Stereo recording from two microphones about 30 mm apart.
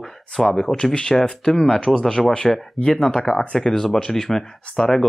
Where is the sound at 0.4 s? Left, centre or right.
Centre; by 3.3 s left.